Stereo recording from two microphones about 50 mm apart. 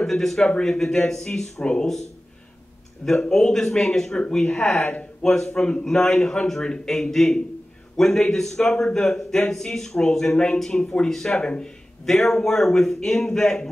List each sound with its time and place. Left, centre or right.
0.0 s a man's voice: centre
3.1 s a man's voice: centre